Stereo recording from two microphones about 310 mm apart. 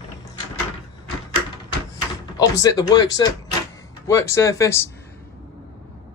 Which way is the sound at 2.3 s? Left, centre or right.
Centre.